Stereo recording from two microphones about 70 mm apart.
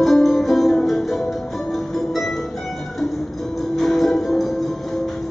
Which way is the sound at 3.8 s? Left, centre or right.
Centre.